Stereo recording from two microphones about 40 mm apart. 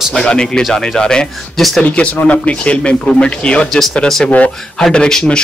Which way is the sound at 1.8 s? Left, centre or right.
Left.